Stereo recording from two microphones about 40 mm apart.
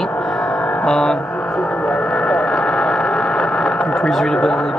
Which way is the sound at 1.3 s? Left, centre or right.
Left.